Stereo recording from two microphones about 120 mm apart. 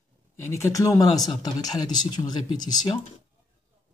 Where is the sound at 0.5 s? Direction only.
25° left (ahead or behind).